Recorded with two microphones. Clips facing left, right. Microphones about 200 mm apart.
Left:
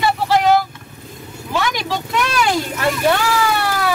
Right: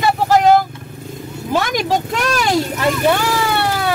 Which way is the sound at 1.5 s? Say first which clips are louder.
Right 4 dB; 45° right (ahead or behind).